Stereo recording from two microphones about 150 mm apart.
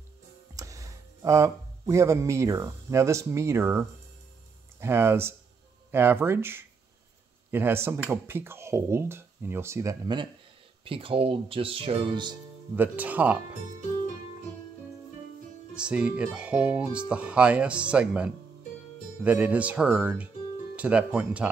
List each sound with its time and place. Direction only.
0.6 s speech: 20° right (ahead or behind)
10.8 s speech: 35° right (ahead or behind)
12.7 s speech: 10° right (ahead or behind)
15.7 s speech: 5° right (ahead or behind)